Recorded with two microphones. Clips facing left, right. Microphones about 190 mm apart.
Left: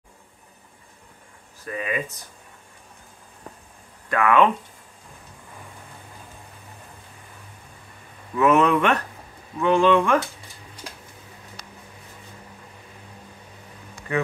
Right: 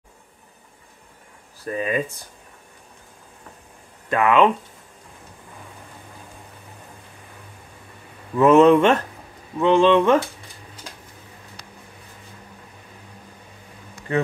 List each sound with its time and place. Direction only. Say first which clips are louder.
1.6 s speech: right 4 dB; 35° right (ahead or behind)
4.1 s speech: right 2 dB; 20° right (ahead or behind)
8.4 s speech: right 6 dB; 25° right (ahead or behind)